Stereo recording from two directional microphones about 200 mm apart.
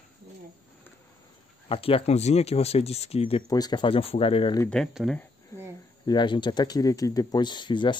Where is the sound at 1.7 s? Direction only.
30° left (ahead or behind).